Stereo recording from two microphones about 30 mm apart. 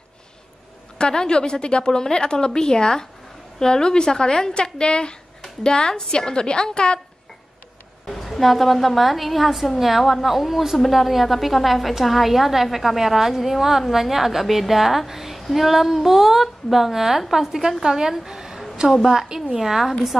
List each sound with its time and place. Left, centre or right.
0.9 s a woman's voice: left
1.9 s a woman's voice: centre
2.1 s a woman's voice: left
8.2 s a woman's voice: centre
18.8 s a woman's voice: right
19.5 s a woman's voice: centre